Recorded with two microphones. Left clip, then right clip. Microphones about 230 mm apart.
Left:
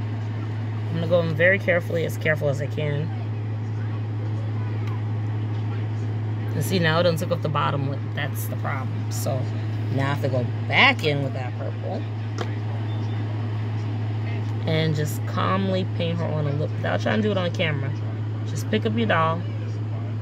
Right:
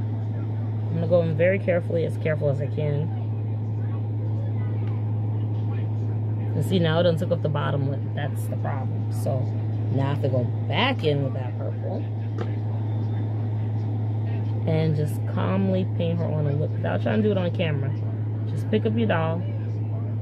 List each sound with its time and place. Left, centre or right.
0.9 s speech: centre
6.7 s speech: centre
9.9 s speech: centre
14.7 s speech: centre